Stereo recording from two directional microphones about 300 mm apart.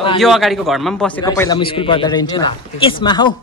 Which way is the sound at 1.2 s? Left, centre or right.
Centre.